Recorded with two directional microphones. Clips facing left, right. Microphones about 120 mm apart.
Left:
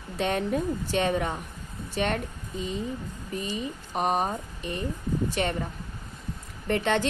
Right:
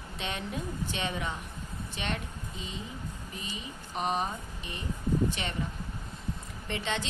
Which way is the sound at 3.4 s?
45° left (ahead or behind).